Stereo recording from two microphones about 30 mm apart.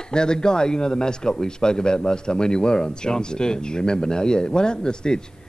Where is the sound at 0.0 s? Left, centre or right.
Left.